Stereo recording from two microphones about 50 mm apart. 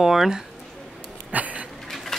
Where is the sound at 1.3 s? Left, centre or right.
Right.